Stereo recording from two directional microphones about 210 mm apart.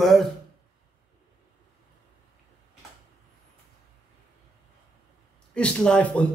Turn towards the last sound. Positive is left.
turn(degrees=5)  # may be behind; listen again after turning